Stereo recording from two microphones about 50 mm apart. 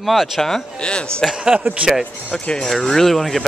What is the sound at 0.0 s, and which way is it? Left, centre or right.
Speech, centre.